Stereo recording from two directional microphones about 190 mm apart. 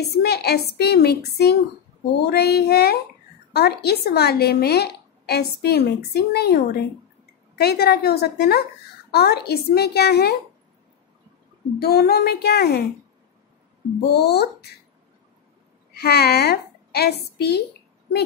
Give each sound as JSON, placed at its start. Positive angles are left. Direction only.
{"t": 0.2, "sound": "a woman's voice", "side_deg": 55}
{"t": 11.8, "sound": "a woman's voice", "side_deg": 55}
{"t": 14.0, "sound": "a woman's voice", "side_deg": 60}
{"t": 15.9, "sound": "a woman's voice", "side_deg": 55}